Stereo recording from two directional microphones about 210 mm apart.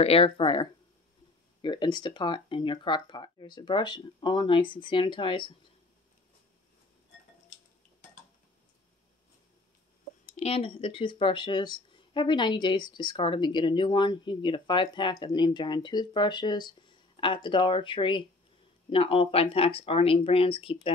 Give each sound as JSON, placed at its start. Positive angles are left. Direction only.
{"t": 0.0, "sound": "speech", "side_deg": 25}
{"t": 10.4, "sound": "speech", "side_deg": 25}